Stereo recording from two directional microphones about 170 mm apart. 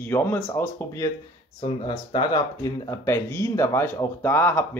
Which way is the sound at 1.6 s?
30° left (ahead or behind).